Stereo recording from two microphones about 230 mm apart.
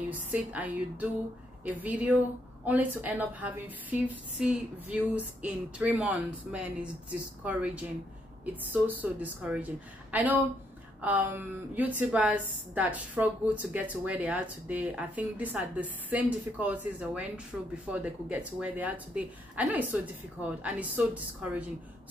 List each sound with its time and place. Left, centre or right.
0.1 s a woman's voice: centre